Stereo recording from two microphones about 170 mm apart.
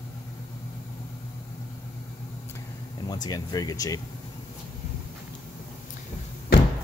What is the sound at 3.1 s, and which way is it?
Speech, 25° left (ahead or behind).